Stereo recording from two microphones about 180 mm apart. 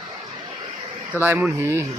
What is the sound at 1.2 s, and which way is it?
Speech, 10° right (ahead or behind).